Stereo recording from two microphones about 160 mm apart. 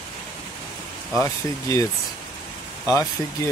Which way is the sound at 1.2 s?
20° left (ahead or behind).